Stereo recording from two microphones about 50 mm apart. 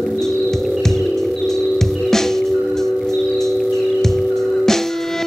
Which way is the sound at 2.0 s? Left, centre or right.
Centre.